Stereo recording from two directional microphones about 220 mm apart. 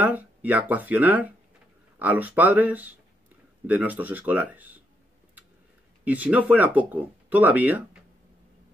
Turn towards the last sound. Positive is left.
turn(degrees=-5)  # may be behind; listen again after turning